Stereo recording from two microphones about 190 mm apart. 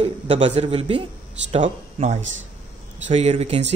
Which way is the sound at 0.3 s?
35° right (ahead or behind).